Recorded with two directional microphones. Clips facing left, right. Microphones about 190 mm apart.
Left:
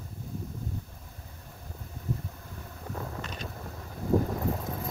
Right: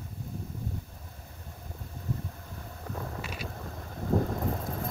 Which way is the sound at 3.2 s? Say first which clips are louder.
Even; 10° right (ahead or behind).